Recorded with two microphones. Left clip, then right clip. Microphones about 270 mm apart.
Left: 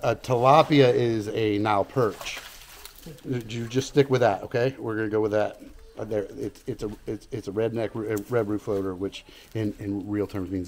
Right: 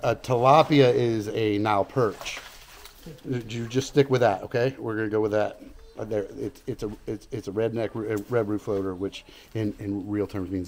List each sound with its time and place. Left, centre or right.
0.0 s speech: centre